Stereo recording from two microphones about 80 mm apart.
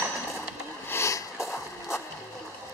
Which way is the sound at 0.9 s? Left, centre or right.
Left.